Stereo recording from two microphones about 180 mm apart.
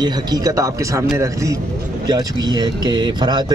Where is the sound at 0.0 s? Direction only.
20° right (ahead or behind).